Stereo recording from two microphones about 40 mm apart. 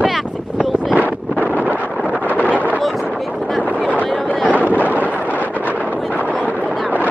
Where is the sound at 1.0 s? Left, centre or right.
Right.